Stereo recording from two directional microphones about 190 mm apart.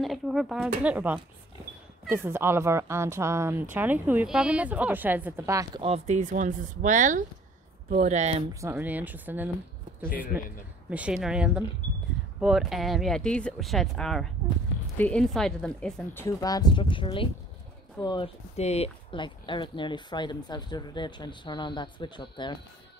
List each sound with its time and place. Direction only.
0.0 s speech: centre (ahead or behind)
2.2 s a woman's voice: 10° right (ahead or behind)
5.8 s speech: 35° right (ahead or behind)
8.5 s a woman's voice: 10° right (ahead or behind); by 18.3 s 25° left (ahead or behind)
18.6 s speech: 35° left (ahead or behind)